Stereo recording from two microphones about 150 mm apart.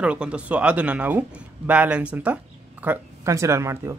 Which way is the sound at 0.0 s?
5° right (ahead or behind).